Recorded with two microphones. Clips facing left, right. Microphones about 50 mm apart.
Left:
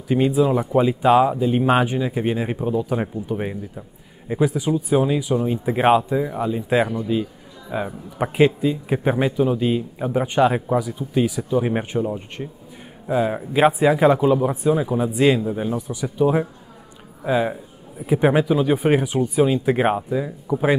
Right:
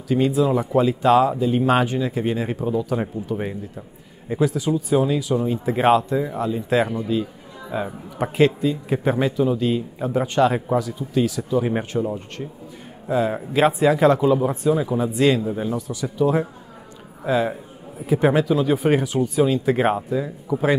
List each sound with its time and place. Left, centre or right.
0.1 s speech: centre